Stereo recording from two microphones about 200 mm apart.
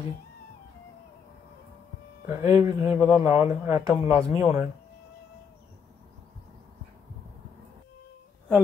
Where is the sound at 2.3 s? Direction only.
15° right (ahead or behind).